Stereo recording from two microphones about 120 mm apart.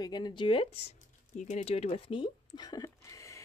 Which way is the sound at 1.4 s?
80° left.